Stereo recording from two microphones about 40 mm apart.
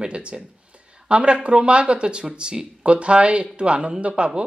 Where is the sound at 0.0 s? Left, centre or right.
Right.